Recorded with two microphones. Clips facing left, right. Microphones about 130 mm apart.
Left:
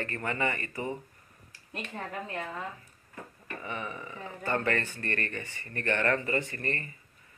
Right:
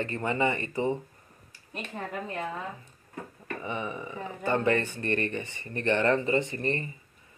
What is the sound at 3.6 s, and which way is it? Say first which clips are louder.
Speech: right 4 dB; 20° right (ahead or behind).